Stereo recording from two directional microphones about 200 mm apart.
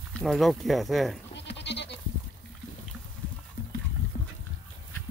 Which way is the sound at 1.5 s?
60° left (ahead or behind).